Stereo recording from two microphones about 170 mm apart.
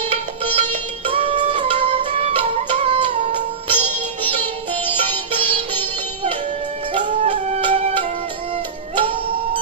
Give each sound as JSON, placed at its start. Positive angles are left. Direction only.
{"t": 0.0, "sound": "music", "side_deg": -35}
{"t": 4.8, "sound": "sitar", "side_deg": -30}
{"t": 6.9, "sound": "music", "side_deg": -30}